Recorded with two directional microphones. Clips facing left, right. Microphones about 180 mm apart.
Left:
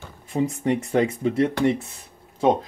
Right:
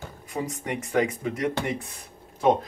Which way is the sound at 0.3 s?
25° left (ahead or behind).